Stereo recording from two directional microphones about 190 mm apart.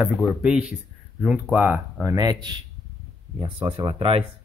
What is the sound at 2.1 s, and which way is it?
Speech, 20° right (ahead or behind).